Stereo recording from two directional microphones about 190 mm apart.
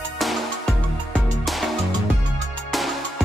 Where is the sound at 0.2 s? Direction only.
Centre (ahead or behind).